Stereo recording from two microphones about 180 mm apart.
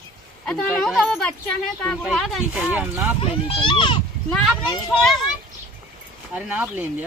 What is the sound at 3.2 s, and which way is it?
Speech, 30° left (ahead or behind).